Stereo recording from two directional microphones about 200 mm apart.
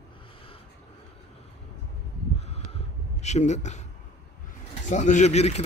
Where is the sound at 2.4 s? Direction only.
30° left (ahead or behind).